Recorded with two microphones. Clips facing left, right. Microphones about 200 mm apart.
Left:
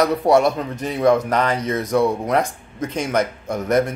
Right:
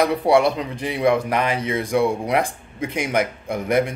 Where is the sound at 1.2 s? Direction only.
10° right (ahead or behind).